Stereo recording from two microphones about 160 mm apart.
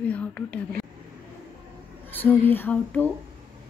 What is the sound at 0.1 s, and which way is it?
Speech, 5° left (ahead or behind).